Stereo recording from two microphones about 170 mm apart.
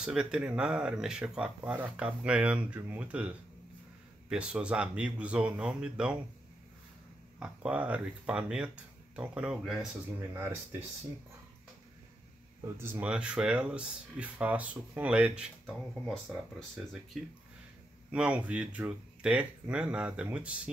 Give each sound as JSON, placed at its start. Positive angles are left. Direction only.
{"t": 0.0, "sound": "speech", "side_deg": -5}
{"t": 7.3, "sound": "speech", "side_deg": -5}
{"t": 10.3, "sound": "speech", "side_deg": -15}
{"t": 12.7, "sound": "speech", "side_deg": -10}